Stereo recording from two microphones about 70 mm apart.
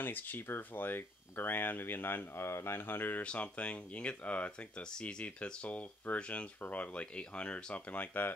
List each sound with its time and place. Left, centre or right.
0.0 s speech: left
3.3 s speech: centre